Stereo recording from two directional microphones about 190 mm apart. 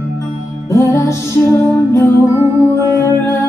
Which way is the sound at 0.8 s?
15° left (ahead or behind).